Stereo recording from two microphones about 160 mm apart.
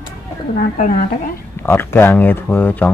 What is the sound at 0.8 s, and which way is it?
Speech, 60° left (ahead or behind).